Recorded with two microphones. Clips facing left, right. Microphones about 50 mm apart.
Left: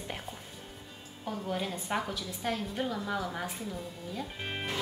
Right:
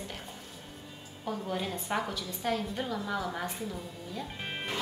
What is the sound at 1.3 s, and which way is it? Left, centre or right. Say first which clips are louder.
A woman's voice: even; centre.